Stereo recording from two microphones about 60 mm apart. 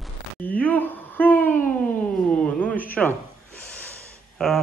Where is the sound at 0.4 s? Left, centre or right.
Left.